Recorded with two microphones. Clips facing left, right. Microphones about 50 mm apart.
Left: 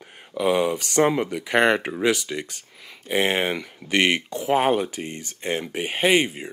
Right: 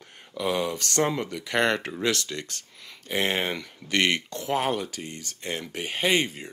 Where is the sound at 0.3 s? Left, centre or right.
Centre.